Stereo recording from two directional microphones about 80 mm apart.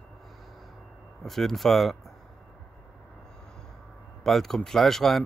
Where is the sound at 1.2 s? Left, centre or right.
Centre.